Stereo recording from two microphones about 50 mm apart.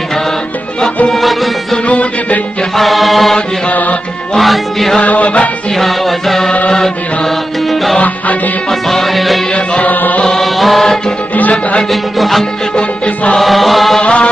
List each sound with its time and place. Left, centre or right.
1.1 s music: centre
1.9 s music: left
2.7 s music: centre
4.4 s music: centre
5.0 s music: left
5.8 s music: centre
8.8 s music: centre
9.8 s music: left
10.2 s chant: centre
11.9 s music: centre
12.7 s music: left
13.4 s chant: centre
14.0 s music: left